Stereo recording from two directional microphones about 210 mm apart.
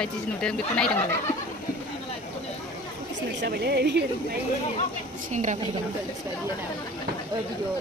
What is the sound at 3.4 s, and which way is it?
Speech, 50° right (ahead or behind).